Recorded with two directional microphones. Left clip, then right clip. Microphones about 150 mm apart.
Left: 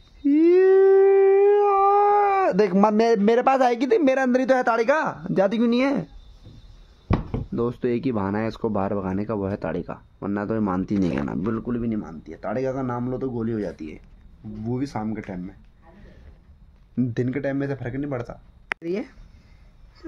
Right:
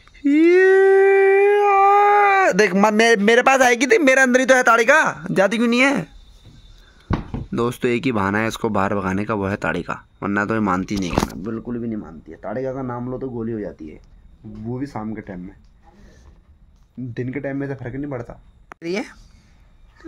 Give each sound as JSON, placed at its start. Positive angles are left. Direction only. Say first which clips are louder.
{"t": 0.2, "sound": "speech", "louder": "right 3 dB", "side_deg": -10}
{"t": 7.2, "sound": "speech", "louder": "right 7 dB", "side_deg": -5}
{"t": 11.0, "sound": "speech", "louder": "right 3 dB", "side_deg": 45}
{"t": 11.5, "sound": "speech", "louder": "even", "side_deg": 15}
{"t": 12.0, "sound": "speech", "louder": "even", "side_deg": 0}
{"t": 17.4, "sound": "speech", "louder": "even", "side_deg": 0}